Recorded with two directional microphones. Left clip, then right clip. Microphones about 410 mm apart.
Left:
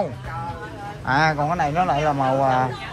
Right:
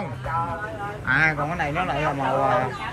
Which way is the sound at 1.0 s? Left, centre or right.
Centre.